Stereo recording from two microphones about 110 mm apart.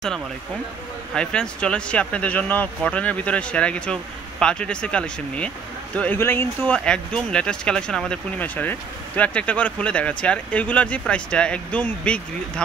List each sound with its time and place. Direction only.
1.1 s speech: 10° left (ahead or behind)
6.7 s speech: 10° left (ahead or behind)